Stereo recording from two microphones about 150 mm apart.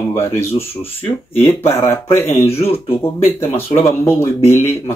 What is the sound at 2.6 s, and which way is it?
Speech, 40° left (ahead or behind).